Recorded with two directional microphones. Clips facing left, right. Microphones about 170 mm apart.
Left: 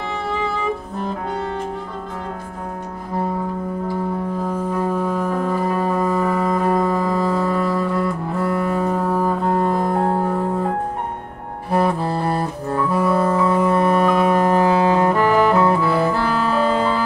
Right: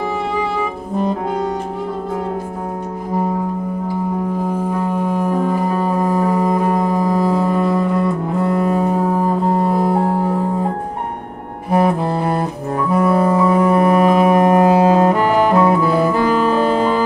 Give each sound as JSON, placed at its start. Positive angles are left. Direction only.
{"t": 5.0, "sound": "music", "side_deg": -15}
{"t": 11.7, "sound": "saxophone", "side_deg": -20}
{"t": 14.1, "sound": "music", "side_deg": -20}